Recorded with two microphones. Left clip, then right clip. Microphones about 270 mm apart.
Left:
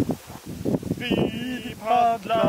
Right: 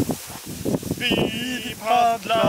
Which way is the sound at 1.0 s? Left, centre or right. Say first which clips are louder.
Right 5 dB; centre.